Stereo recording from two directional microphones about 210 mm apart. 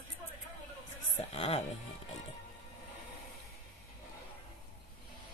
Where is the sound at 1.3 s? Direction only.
30° left (ahead or behind).